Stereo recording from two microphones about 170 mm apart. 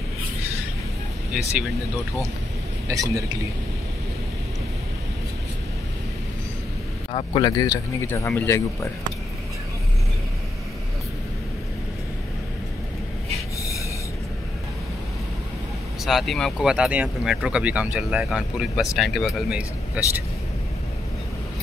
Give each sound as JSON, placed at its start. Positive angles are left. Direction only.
{"t": 2.9, "sound": "a man's voice", "side_deg": -20}
{"t": 7.1, "sound": "speech", "side_deg": 30}
{"t": 16.1, "sound": "speech", "side_deg": 0}